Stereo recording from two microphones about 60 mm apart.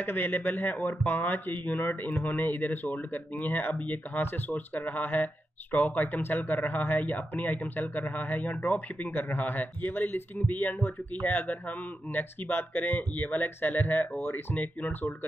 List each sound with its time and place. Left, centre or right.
0.0 s speech: left